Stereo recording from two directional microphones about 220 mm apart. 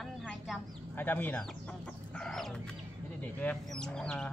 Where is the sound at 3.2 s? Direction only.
5° left (ahead or behind).